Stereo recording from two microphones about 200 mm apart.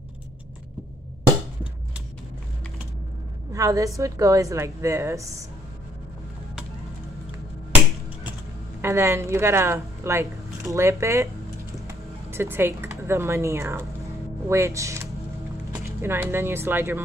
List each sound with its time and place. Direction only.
3.5 s a woman's voice: 15° right (ahead or behind)
8.8 s a woman's voice: 15° right (ahead or behind)